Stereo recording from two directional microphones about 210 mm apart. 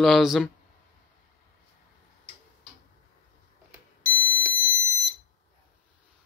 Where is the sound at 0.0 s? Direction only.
Centre (ahead or behind).